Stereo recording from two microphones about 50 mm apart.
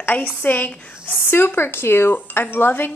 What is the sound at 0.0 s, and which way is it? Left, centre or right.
A woman's voice, left.